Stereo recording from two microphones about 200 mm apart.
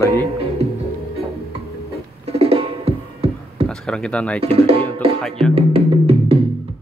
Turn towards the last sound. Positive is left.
turn(degrees=-30)  # may be behind; listen again after turning